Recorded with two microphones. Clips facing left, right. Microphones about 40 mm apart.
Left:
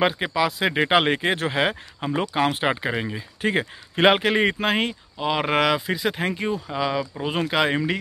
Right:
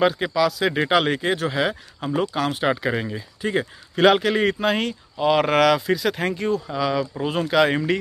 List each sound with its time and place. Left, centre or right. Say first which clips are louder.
0.0 s speech: right 2 dB; left
3.3 s speech: left 1 dB; left
5.2 s speech: right 4 dB; centre
7.0 s speech: right 2 dB; centre